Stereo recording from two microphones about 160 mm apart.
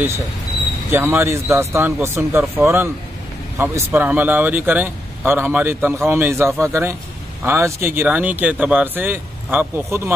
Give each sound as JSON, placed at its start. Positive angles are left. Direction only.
{"t": 0.9, "sound": "speech", "side_deg": -15}